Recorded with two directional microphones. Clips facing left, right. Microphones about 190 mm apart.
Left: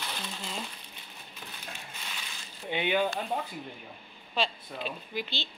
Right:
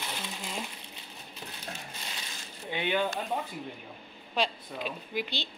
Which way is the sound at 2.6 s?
20° left (ahead or behind).